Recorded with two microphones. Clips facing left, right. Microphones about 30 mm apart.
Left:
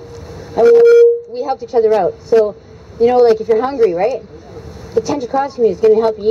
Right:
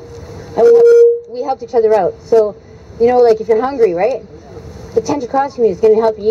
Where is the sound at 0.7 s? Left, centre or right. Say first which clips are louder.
Even; left.